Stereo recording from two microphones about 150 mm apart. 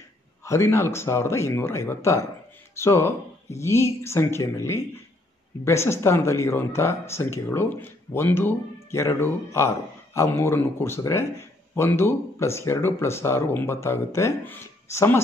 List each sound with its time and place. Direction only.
0.5 s a man's voice: 20° left (ahead or behind)